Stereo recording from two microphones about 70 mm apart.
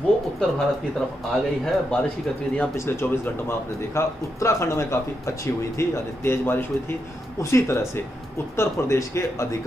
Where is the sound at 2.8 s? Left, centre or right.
Left.